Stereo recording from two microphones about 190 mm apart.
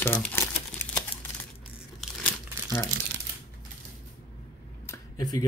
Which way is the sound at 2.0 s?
10° left (ahead or behind).